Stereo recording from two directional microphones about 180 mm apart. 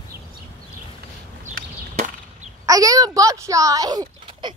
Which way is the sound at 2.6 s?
20° right (ahead or behind).